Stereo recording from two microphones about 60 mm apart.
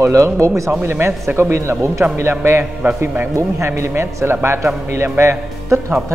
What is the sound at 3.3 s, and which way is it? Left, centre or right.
Speech, right.